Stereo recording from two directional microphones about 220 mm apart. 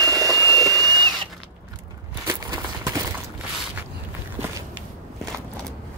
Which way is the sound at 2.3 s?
15° right (ahead or behind).